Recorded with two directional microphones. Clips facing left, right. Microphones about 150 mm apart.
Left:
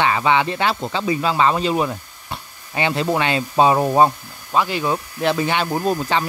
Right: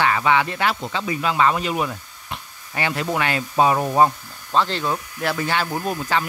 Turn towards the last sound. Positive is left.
turn(degrees=35)  # may be behind; listen again after turning